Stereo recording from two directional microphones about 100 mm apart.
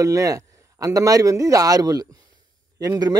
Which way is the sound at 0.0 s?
35° right (ahead or behind).